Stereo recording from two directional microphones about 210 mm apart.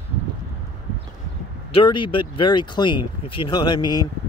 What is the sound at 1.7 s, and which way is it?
Speech, 25° left (ahead or behind).